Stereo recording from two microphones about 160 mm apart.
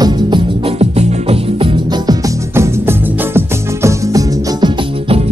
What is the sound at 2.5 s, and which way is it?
Music, 15° right (ahead or behind).